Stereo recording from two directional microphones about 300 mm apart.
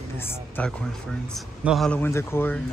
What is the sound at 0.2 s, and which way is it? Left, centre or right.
Speech, centre.